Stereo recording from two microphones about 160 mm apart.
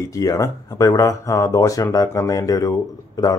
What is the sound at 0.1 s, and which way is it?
Speech, 20° left (ahead or behind).